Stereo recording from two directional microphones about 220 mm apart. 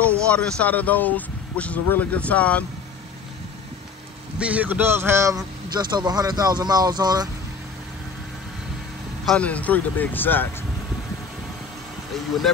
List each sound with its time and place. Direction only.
0.0 s speech: 5° left (ahead or behind)
4.4 s a man's voice: 5° right (ahead or behind)
9.2 s speech: 5° left (ahead or behind)